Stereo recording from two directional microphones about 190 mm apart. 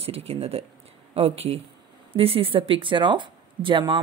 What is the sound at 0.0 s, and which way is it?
Speech, 30° right (ahead or behind).